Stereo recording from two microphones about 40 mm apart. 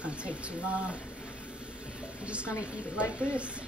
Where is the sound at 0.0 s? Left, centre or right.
Right.